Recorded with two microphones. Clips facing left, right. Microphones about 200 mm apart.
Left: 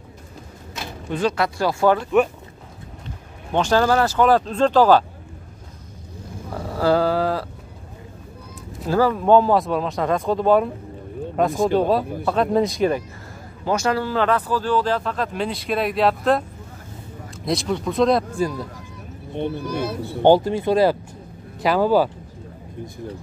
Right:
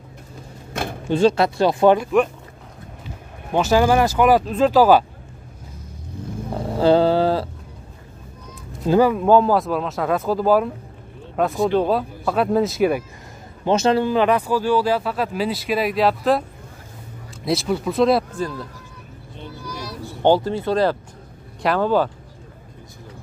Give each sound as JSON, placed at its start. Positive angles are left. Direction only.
{"t": 1.0, "sound": "speech", "side_deg": -30}
{"t": 3.5, "sound": "speech", "side_deg": -10}
{"t": 6.5, "sound": "a sound", "side_deg": -25}
{"t": 8.8, "sound": "speech", "side_deg": -20}
{"t": 9.1, "sound": "speech", "side_deg": 0}
{"t": 13.7, "sound": "speech", "side_deg": -25}
{"t": 17.5, "sound": "speech", "side_deg": -5}
{"t": 18.3, "sound": "speech", "side_deg": 10}
{"t": 19.3, "sound": "speech", "side_deg": 60}
{"t": 20.2, "sound": "speech", "side_deg": 15}